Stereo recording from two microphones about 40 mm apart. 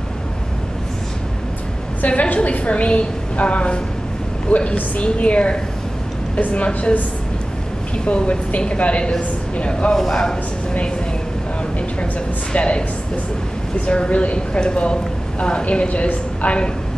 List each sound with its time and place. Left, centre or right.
2.0 s a woman's voice: left
8.0 s a woman's voice: left
9.9 s speech: centre
12.5 s a woman's voice: left
13.8 s a woman's voice: left